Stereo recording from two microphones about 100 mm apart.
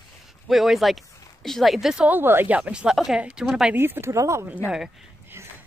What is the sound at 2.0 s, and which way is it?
A woman's voice, 20° right (ahead or behind).